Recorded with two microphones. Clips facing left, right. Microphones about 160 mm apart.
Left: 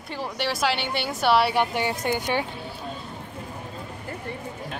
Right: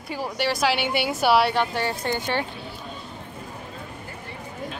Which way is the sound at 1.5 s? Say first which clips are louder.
Left 1 dB; 15° left (ahead or behind).